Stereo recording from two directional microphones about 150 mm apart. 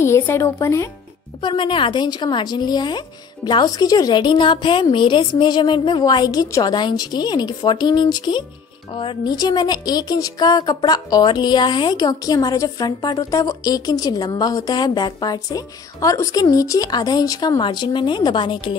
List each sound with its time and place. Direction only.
0.0 s a woman's voice: 15° left (ahead or behind)
1.4 s a woman's voice: 35° left (ahead or behind)